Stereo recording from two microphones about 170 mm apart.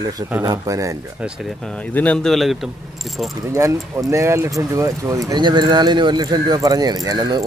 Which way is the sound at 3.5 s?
15° right (ahead or behind).